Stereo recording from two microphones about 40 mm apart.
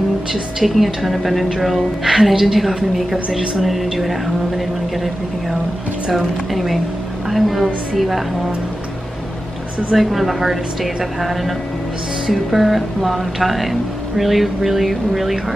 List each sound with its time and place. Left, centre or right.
0.3 s speech: centre
3.3 s speech: centre
3.6 s speech: centre
9.9 s speech: centre